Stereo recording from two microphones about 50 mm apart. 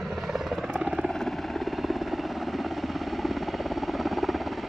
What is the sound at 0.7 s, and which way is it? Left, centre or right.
Helicopter, centre.